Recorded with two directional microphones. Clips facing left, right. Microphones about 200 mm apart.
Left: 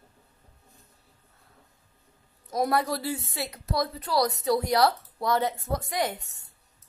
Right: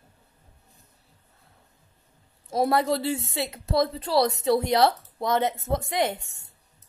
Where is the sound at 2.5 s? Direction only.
25° right (ahead or behind).